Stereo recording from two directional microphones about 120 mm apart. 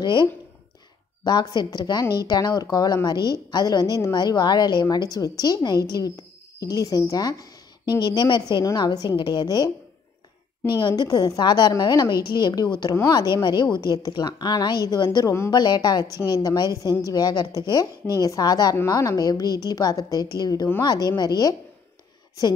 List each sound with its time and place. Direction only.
0.0 s a woman's voice: 40° left (ahead or behind)
10.7 s a woman's voice: 35° left (ahead or behind)
15.5 s a woman's voice: 35° left (ahead or behind)